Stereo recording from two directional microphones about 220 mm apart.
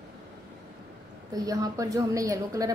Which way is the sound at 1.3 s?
15° right (ahead or behind).